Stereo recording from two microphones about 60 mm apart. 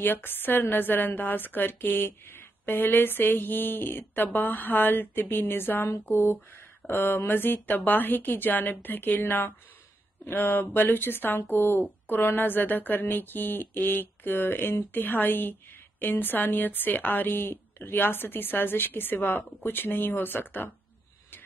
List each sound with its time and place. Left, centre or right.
0.0 s a woman's voice: left